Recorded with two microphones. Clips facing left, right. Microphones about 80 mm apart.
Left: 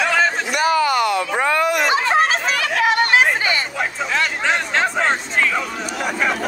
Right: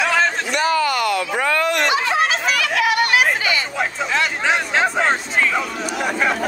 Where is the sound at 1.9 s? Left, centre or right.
Left.